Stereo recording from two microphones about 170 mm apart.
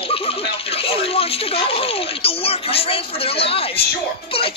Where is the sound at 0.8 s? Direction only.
35° left (ahead or behind).